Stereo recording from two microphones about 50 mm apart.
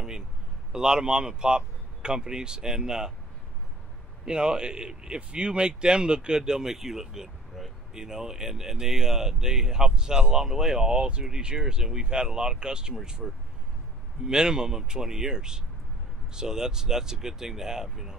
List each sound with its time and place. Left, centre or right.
0.7 s speech: centre
4.3 s speech: centre